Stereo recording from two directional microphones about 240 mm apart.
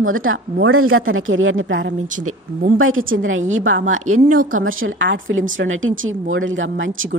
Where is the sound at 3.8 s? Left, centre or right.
Right.